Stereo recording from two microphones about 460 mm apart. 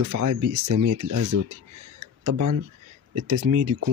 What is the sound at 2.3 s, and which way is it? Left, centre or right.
Speech, right.